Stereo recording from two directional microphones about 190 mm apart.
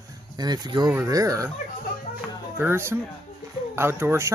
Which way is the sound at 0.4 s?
20° right (ahead or behind).